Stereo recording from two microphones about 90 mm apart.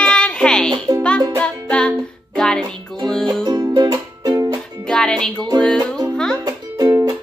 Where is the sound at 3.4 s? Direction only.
50° right (ahead or behind).